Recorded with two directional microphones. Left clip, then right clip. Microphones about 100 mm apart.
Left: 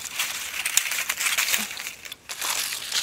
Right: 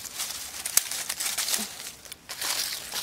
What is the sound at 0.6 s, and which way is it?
Crumpling, 35° left (ahead or behind).